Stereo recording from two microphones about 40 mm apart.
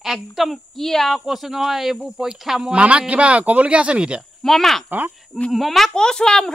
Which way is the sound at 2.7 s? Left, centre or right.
Right.